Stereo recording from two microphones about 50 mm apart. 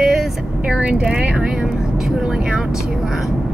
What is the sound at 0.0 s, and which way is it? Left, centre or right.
Vehicle, centre.